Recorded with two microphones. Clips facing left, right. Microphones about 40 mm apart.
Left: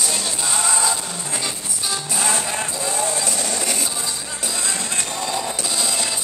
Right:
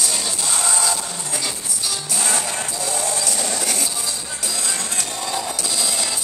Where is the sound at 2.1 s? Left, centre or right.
Centre.